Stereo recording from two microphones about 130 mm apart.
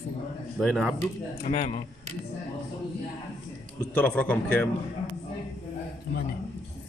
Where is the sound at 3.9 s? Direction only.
10° left (ahead or behind).